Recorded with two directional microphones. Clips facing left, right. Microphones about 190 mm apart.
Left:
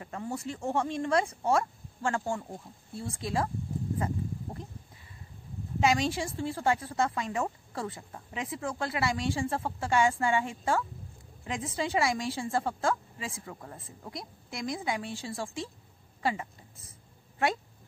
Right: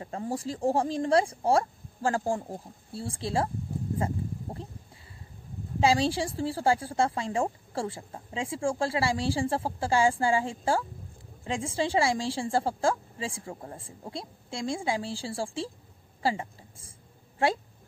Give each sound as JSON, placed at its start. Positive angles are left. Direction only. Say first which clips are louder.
{"t": 0.0, "sound": "speech", "louder": "right 3 dB", "side_deg": -30}
{"t": 5.8, "sound": "a woman's voice", "louder": "right 3 dB", "side_deg": -30}
{"t": 16.2, "sound": "a sound", "louder": "right 2 dB", "side_deg": -30}
{"t": 17.4, "sound": "a woman's voice", "louder": "right 3 dB", "side_deg": -30}